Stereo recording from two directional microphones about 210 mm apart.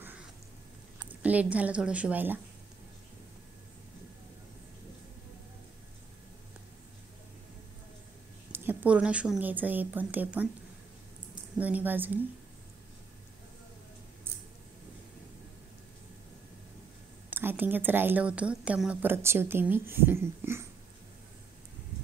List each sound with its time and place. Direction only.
0.9 s speech: 5° right (ahead or behind)
8.5 s a woman's voice: 10° right (ahead or behind)
11.5 s a woman's voice: 5° right (ahead or behind)
17.3 s a woman's voice: 10° right (ahead or behind)